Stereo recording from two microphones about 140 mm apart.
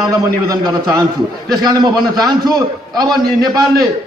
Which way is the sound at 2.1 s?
30° right (ahead or behind).